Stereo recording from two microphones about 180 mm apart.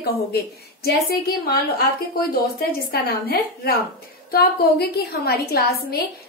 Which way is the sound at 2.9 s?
55° left (ahead or behind).